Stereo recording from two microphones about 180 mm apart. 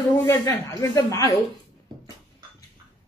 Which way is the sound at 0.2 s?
20° left (ahead or behind).